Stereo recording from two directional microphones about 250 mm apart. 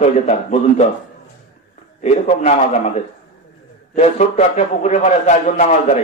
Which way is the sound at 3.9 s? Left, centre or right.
Left.